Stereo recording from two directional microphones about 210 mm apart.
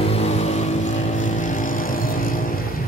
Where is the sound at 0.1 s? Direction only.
30° left (ahead or behind).